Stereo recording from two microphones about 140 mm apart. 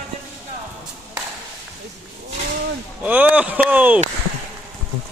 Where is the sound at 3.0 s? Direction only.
10° right (ahead or behind).